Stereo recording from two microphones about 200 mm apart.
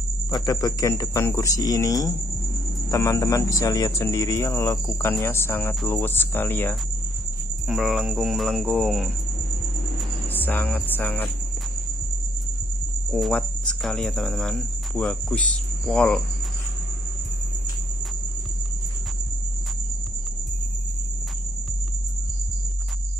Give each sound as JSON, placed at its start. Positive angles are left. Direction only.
{"t": 0.3, "sound": "speech", "side_deg": 15}
{"t": 7.6, "sound": "speech", "side_deg": 0}
{"t": 10.3, "sound": "speech", "side_deg": 10}
{"t": 13.1, "sound": "cricket", "side_deg": 5}
{"t": 15.9, "sound": "speech", "side_deg": 5}